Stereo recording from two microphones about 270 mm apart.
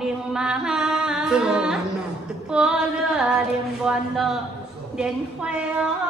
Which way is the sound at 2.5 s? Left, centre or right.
Centre.